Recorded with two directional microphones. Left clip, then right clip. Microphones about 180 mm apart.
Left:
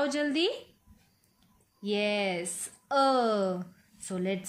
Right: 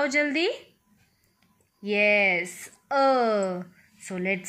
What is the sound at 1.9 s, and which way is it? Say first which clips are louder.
A woman's voice: right 8 dB; 10° right (ahead or behind).